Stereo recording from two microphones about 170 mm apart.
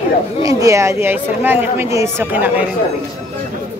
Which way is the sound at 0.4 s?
20° right (ahead or behind).